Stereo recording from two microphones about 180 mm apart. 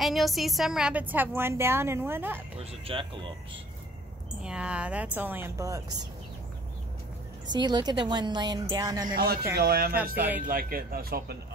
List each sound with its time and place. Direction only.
0.0 s a woman's voice: centre (ahead or behind)
2.6 s a woman's voice: 30° right (ahead or behind)
4.4 s a woman's voice: 5° right (ahead or behind)
7.5 s a woman's voice: 25° right (ahead or behind)
9.1 s speech: 55° right (ahead or behind)